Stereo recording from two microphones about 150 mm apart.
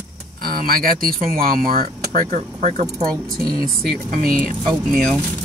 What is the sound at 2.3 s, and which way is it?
Speech, 45° right (ahead or behind).